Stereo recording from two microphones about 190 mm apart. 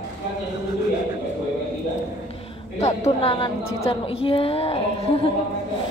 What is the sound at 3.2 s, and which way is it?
A woman's voice, 30° left (ahead or behind).